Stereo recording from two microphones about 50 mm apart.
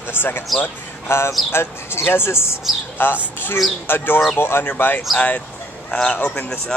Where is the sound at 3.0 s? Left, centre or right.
Left.